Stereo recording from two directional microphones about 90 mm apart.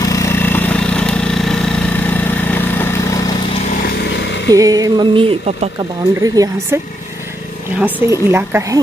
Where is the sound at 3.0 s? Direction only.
40° left (ahead or behind).